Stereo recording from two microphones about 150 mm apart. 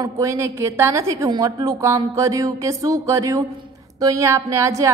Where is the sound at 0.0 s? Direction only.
20° right (ahead or behind).